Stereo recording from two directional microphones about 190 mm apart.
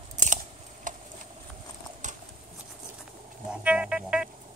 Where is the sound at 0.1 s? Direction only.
40° right (ahead or behind).